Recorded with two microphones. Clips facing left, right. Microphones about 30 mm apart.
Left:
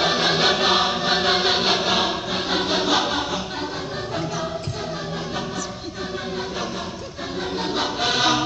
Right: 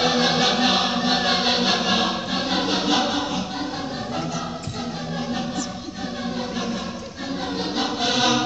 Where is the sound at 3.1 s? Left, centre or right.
Left.